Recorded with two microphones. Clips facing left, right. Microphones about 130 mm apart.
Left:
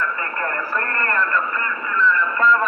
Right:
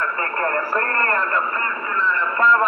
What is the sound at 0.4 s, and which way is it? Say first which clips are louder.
A man's voice: right 4 dB; 30° right (ahead or behind).